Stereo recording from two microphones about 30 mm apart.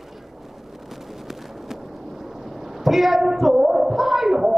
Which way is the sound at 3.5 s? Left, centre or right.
Centre.